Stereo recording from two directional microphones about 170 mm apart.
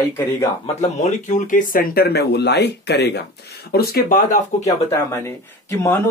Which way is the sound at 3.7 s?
65° left (ahead or behind).